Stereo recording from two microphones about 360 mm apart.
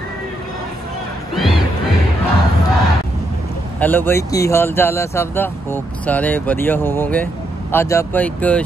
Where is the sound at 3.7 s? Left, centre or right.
Centre.